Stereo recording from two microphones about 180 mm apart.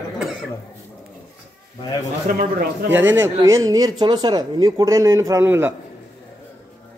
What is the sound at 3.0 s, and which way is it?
Speech, 15° right (ahead or behind).